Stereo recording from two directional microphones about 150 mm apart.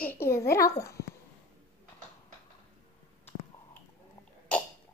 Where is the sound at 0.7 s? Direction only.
20° left (ahead or behind).